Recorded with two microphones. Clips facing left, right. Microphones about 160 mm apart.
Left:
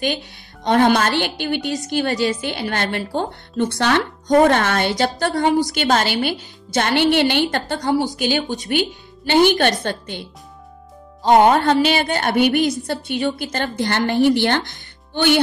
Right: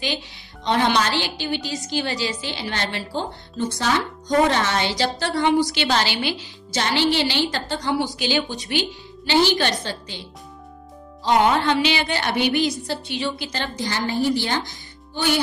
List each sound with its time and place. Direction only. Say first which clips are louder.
0.7 s a woman's voice: left 5 dB; 50° left (ahead or behind)
11.2 s a woman's voice: left 5 dB; 50° left (ahead or behind); by 15.4 s 65° left (ahead or behind)